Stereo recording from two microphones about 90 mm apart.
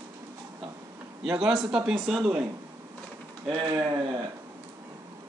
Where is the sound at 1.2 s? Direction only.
10° right (ahead or behind).